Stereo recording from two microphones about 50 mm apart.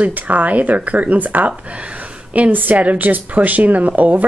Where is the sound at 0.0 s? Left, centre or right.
Right.